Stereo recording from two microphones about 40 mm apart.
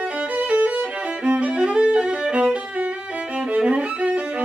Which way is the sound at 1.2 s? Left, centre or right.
Right.